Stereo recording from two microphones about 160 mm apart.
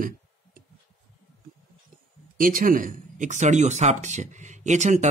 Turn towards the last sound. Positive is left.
turn(degrees=-45)  # may be behind; listen again after turning